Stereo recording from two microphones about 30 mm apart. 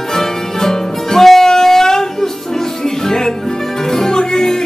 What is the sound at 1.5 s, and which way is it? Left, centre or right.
Guitar, centre.